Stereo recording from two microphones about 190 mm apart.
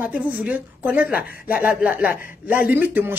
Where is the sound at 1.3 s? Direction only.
55° left (ahead or behind).